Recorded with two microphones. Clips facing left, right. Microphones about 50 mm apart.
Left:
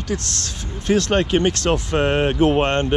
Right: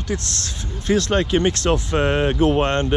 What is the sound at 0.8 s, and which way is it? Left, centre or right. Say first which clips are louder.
Speech: left 1 dB; left.